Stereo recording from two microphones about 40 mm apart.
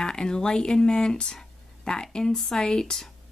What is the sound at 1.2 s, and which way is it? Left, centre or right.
Speech, centre.